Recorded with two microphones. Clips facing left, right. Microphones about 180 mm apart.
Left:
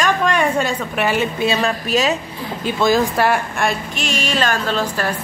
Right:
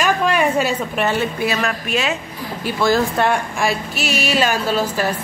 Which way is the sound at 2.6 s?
20° left (ahead or behind).